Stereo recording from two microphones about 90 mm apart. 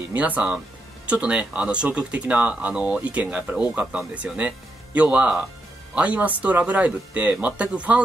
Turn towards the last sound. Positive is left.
turn(degrees=-15)  # may be behind; listen again after turning